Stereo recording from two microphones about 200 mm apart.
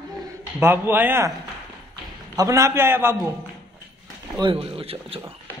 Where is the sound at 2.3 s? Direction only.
15° right (ahead or behind).